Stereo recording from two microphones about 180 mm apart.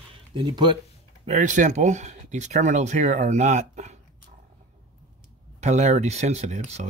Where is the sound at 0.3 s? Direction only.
25° right (ahead or behind).